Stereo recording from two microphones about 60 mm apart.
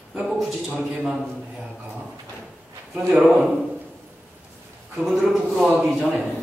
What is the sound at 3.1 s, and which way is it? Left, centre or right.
Speech, centre.